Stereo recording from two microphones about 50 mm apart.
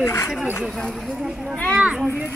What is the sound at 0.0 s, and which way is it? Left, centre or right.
Speech, left.